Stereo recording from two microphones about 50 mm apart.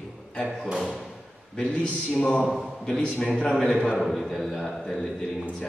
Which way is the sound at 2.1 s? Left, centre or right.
Centre.